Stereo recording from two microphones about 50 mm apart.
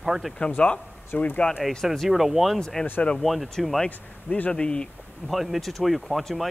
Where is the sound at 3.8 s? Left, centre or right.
Left.